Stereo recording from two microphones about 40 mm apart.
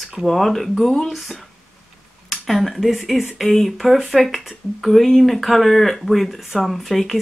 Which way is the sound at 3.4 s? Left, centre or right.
Centre.